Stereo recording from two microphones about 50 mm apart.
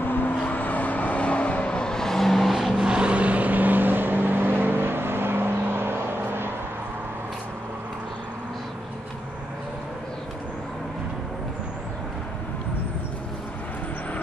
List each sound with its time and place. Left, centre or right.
0.0 s vehicle: left; by 2.9 s centre
2.9 s vehicle: right